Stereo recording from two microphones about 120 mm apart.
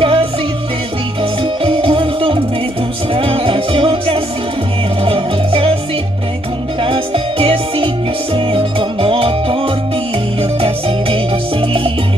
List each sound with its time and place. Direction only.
0.0 s music: 50° right (ahead or behind)
1.6 s music: 50° right (ahead or behind)
6.8 s music: 45° right (ahead or behind)